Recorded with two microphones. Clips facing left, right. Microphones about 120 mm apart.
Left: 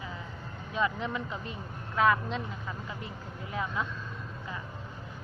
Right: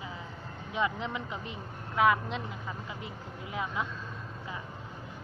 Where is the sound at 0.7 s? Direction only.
15° right (ahead or behind).